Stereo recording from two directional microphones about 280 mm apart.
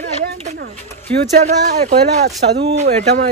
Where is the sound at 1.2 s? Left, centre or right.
Right.